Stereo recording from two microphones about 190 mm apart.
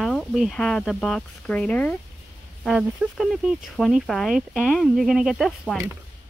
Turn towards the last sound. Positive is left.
turn(degrees=0)  # may be behind; listen again after turning